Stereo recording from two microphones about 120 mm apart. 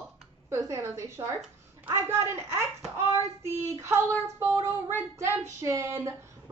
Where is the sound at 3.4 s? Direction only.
20° right (ahead or behind).